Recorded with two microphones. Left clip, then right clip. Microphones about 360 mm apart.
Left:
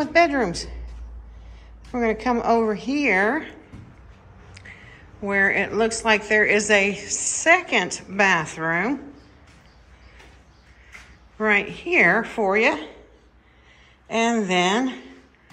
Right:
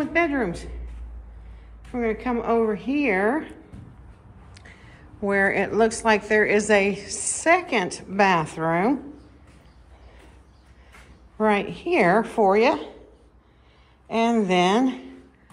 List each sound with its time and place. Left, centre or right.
0.0 s speech: centre
1.9 s speech: centre
4.7 s speech: centre
11.3 s speech: centre
14.0 s speech: centre